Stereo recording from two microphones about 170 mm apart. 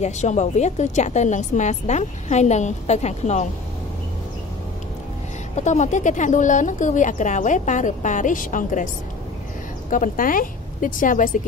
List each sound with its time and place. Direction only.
0.0 s a woman's voice: 45° left (ahead or behind)
5.6 s a woman's voice: 45° left (ahead or behind)
9.8 s a woman's voice: 50° left (ahead or behind)